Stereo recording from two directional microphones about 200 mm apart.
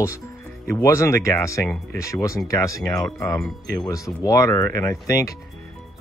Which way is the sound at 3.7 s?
15° left (ahead or behind).